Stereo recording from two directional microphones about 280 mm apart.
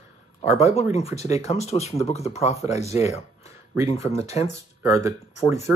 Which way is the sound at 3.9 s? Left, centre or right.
Left.